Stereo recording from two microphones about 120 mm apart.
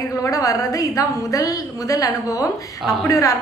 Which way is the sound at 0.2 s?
30° left (ahead or behind).